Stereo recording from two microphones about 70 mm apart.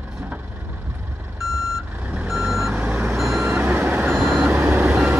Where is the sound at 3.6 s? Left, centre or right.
Right.